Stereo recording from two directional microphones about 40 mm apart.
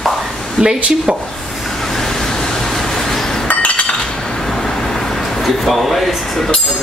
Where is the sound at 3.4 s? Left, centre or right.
Left.